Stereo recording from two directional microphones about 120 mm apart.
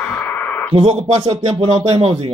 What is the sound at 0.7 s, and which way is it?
Speech, 60° right (ahead or behind).